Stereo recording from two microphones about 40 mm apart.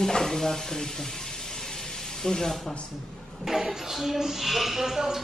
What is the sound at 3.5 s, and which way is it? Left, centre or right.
Speech, centre.